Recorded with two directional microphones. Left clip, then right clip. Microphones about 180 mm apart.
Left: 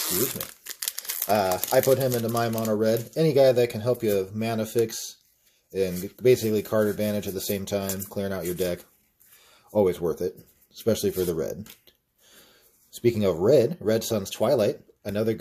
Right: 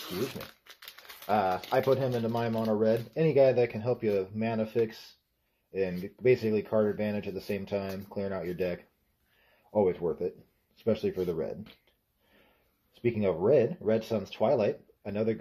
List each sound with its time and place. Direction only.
0.7 s speech: 25° left (ahead or behind)
13.0 s speech: 35° left (ahead or behind)